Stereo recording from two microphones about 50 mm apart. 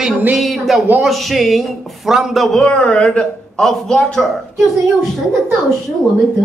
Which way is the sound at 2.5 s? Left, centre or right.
Centre.